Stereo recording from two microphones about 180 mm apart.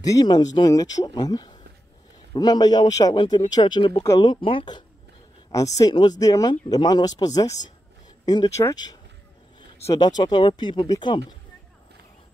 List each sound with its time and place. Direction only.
0.0 s speech: 20° left (ahead or behind)